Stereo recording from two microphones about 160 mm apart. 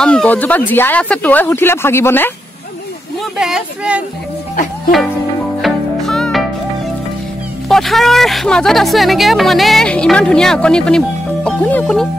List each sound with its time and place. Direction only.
0.0 s speech: 5° left (ahead or behind)
3.3 s a woman's voice: 5° right (ahead or behind)
5.6 s music: 5° left (ahead or behind)
7.6 s a woman's voice: centre (ahead or behind)